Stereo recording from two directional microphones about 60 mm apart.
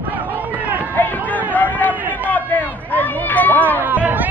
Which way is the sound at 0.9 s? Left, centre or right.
Left.